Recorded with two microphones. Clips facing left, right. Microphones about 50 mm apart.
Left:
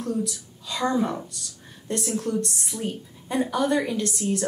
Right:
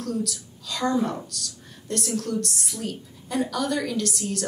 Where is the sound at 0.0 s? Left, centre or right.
Left.